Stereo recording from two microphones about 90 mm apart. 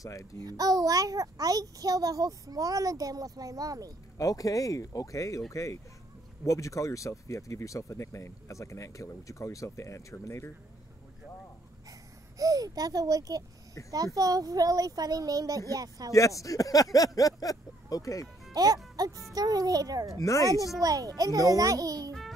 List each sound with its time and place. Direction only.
0.0 s speech: 40° left (ahead or behind)
0.4 s a child's voice: 45° right (ahead or behind)
4.2 s speech: 40° left (ahead or behind)
12.4 s speech: 45° right (ahead or behind)
16.1 s speech: 35° left (ahead or behind)
16.9 s a sound: 40° left (ahead or behind)
17.4 s speech: 45° left (ahead or behind)
18.5 s a child's voice: 45° right (ahead or behind)
20.2 s speech: 40° left (ahead or behind)
20.8 s speech: 45° right (ahead or behind)